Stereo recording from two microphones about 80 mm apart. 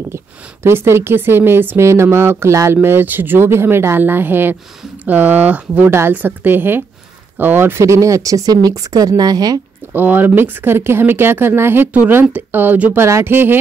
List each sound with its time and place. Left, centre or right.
0.7 s speech: right
9.9 s speech: right